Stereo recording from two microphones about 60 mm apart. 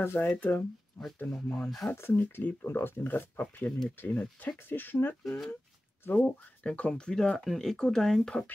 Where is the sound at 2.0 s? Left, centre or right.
Left.